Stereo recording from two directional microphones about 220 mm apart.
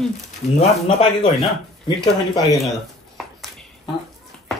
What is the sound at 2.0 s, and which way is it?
Speech, 15° left (ahead or behind).